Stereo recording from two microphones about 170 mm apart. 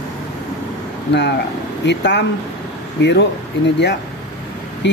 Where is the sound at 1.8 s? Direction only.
90° left.